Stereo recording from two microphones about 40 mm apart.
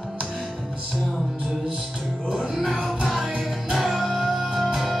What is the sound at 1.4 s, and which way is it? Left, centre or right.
Music, centre.